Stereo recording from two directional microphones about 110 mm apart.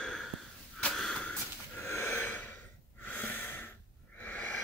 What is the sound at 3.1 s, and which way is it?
Snort, 15° left (ahead or behind).